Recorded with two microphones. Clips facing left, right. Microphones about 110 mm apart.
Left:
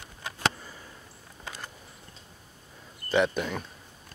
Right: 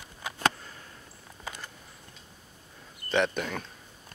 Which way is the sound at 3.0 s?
5° left (ahead or behind).